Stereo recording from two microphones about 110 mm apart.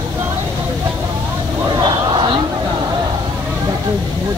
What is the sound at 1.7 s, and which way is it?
Vehicle, 40° right (ahead or behind).